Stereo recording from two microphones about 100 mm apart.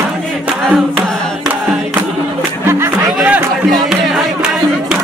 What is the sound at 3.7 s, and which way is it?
Music, 5° right (ahead or behind).